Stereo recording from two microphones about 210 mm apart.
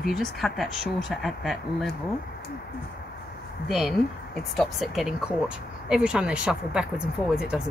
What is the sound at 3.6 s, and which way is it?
Speech, centre (ahead or behind).